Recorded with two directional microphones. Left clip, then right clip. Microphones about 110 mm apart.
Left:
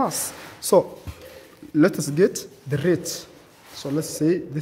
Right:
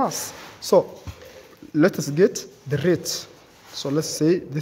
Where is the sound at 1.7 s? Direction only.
20° right (ahead or behind); by 4.6 s 35° right (ahead or behind).